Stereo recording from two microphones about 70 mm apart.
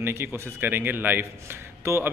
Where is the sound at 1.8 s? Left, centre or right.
Right.